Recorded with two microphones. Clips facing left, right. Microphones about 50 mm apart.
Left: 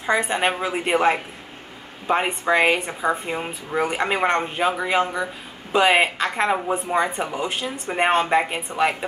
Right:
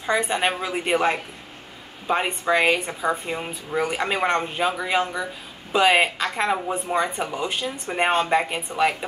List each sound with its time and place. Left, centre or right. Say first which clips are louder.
0.0 s speech: left 1 dB; centre
5.0 s speech: left 2 dB; left
5.7 s speech: left 1 dB; centre